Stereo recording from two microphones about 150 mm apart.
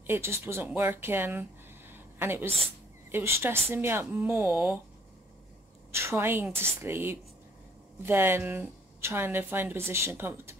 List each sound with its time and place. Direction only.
0.0 s a woman's voice: 15° right (ahead or behind)
1.9 s a sound: 15° right (ahead or behind)
3.1 s a woman's voice: 15° right (ahead or behind)
5.9 s a woman's voice: 15° right (ahead or behind)